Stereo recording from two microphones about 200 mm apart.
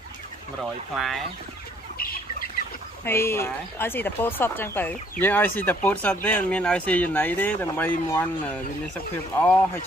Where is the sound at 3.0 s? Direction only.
10° left (ahead or behind).